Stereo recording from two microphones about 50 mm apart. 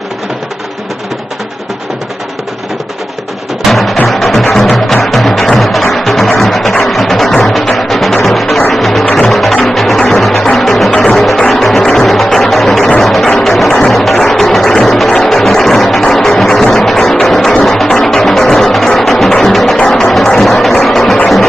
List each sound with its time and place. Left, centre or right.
3.6 s music: centre
11.8 s music: centre
13.7 s music: centre
20.3 s a sound: centre
20.8 s music: centre